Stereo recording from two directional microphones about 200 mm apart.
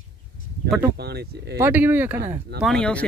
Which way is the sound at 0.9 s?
55° right (ahead or behind).